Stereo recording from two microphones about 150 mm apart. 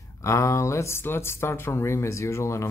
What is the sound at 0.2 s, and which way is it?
Speech, 20° left (ahead or behind).